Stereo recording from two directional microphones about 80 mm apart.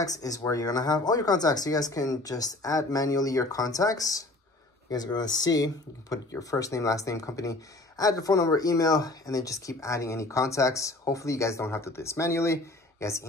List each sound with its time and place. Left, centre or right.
0.0 s speech: left